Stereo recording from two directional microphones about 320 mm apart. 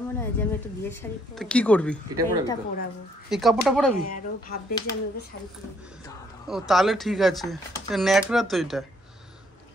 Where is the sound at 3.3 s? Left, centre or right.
Centre.